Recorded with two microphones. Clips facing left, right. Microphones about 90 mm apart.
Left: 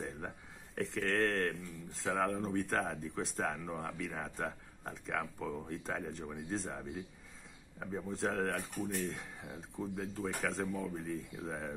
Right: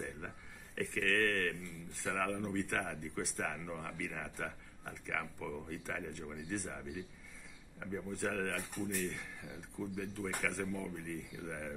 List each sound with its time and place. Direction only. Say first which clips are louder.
0.7 s speech: left 1 dB; 30° left (ahead or behind)